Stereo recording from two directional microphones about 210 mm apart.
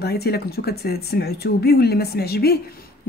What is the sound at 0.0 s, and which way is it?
Speech, 50° left (ahead or behind).